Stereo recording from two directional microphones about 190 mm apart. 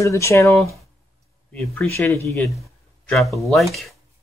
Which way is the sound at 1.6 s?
15° left (ahead or behind).